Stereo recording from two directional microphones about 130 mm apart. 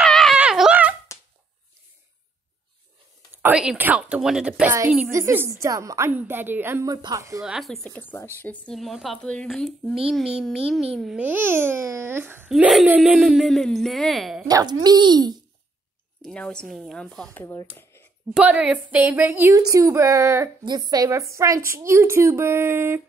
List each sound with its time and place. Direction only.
0.0 s a sound: centre (ahead or behind)
3.4 s a child's voice: 10° right (ahead or behind)
5.1 s a woman's voice: 20° right (ahead or behind)
6.9 s a woman's voice: 30° right (ahead or behind)
7.4 s speech: centre (ahead or behind); by 8.7 s 15° left (ahead or behind)
8.7 s a child's voice: centre (ahead or behind); by 12.4 s 15° right (ahead or behind)
12.4 s a child's voice: 5° right (ahead or behind)
14.5 s a child's voice: 30° right (ahead or behind)
16.3 s speech: 5° left (ahead or behind)
18.3 s a woman's voice: 10° right (ahead or behind)